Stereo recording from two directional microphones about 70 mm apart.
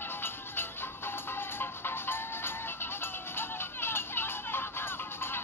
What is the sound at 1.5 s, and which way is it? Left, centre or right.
Music, left.